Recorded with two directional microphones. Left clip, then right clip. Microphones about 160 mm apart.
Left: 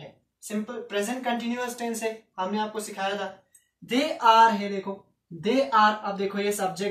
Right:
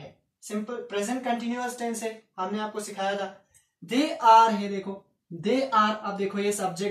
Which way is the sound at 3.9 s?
5° left (ahead or behind).